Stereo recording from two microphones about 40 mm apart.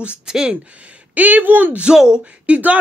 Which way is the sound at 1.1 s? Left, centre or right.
Right.